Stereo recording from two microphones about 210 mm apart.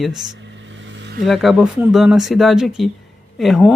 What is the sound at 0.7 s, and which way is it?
Vehicle, 60° right (ahead or behind).